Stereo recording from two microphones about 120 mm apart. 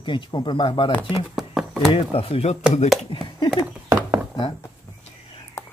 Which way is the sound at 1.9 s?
50° left (ahead or behind).